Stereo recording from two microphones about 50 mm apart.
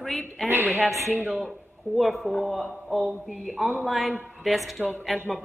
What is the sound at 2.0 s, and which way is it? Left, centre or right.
A woman's voice, centre.